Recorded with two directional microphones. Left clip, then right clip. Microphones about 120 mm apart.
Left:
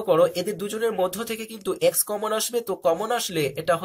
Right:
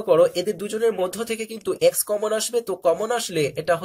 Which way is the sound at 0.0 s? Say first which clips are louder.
Right 2 dB; 45° right (ahead or behind).